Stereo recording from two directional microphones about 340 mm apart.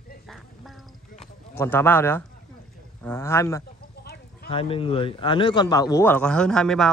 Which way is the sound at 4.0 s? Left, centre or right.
Left.